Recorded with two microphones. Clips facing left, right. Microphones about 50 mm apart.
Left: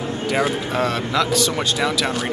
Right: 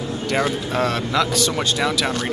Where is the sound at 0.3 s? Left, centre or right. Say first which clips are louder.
Even; centre.